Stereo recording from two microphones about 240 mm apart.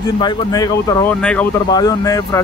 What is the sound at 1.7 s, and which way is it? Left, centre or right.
Speech, centre.